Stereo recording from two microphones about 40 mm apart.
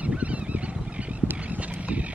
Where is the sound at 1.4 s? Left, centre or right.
Right.